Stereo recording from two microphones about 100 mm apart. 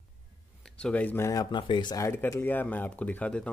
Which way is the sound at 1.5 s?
50° left (ahead or behind).